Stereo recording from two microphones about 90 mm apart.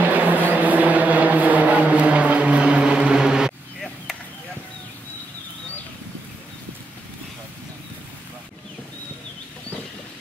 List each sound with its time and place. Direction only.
0.0 s vehicle: 20° right (ahead or behind)